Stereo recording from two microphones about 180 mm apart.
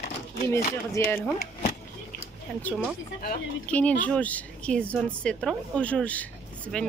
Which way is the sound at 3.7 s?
10° left (ahead or behind).